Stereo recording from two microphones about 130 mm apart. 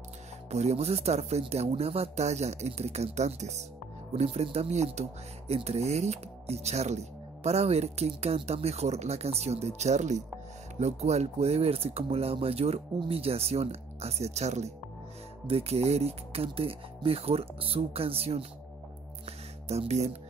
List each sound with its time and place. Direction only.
0.5 s speech: 55° right (ahead or behind)
19.2 s music: 55° right (ahead or behind)